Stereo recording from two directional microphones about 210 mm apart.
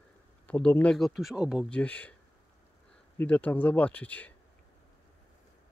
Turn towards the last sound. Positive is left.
turn(degrees=5)  # may be behind; listen again after turning